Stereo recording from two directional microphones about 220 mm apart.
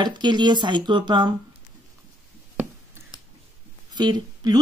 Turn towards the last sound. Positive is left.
turn(degrees=-20)  # may be behind; listen again after turning